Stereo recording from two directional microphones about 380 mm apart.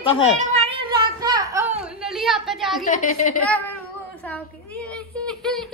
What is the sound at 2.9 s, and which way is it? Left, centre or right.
Speech, centre.